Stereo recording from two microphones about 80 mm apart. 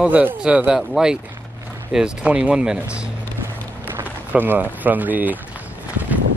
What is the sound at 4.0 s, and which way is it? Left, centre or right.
Speech, right.